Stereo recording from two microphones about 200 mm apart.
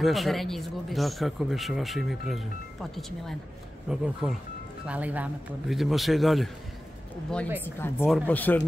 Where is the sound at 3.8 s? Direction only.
5° right (ahead or behind).